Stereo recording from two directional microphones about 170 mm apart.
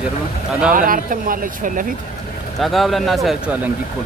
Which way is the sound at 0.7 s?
55° right (ahead or behind).